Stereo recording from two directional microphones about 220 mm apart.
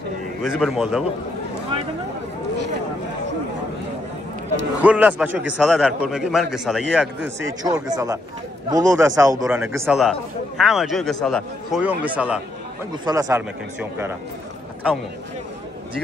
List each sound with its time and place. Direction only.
0.4 s a man's voice: 5° right (ahead or behind)
4.8 s a man's voice: 5° right (ahead or behind)